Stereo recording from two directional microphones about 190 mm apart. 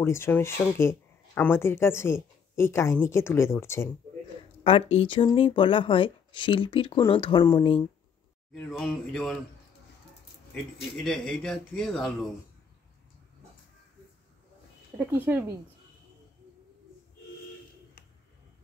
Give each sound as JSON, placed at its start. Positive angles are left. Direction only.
{"t": 0.0, "sound": "speech", "side_deg": 15}
{"t": 4.9, "sound": "speech", "side_deg": 25}
{"t": 8.6, "sound": "speech", "side_deg": 0}
{"t": 11.1, "sound": "speech", "side_deg": 5}
{"t": 15.0, "sound": "speech", "side_deg": -10}